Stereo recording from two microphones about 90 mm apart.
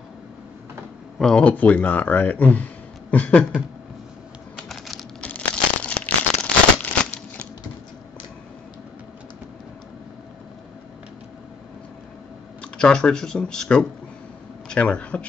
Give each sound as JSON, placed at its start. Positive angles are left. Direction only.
{"t": 1.2, "sound": "speech", "side_deg": 10}
{"t": 4.6, "sound": "typing", "side_deg": 0}
{"t": 5.2, "sound": "a sound", "side_deg": 15}
{"t": 12.7, "sound": "speech", "side_deg": 10}